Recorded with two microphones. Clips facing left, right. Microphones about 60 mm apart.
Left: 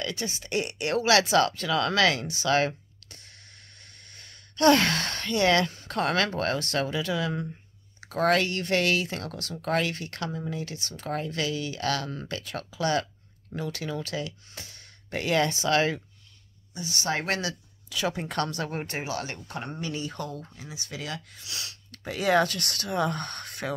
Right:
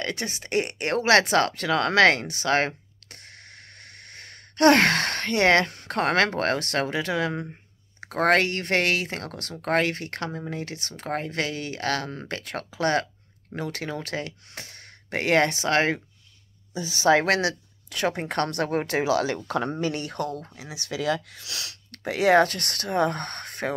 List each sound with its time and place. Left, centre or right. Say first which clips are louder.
0.0 s speech: right 2 dB; right
17.2 s speech: right 6 dB; right
18.5 s speech: right 7 dB; right
20.5 s speech: right 6 dB; right